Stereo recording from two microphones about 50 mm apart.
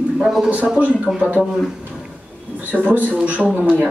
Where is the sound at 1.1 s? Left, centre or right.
Centre.